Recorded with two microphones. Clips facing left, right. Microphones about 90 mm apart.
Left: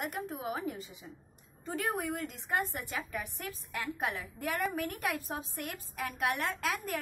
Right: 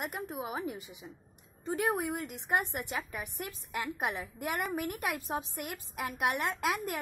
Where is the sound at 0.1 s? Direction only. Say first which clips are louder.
Even; 15° right (ahead or behind).